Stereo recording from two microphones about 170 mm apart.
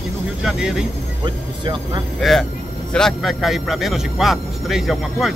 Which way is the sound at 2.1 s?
Centre (ahead or behind).